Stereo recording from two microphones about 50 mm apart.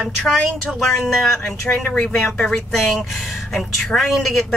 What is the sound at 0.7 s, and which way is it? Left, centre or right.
Speech, centre.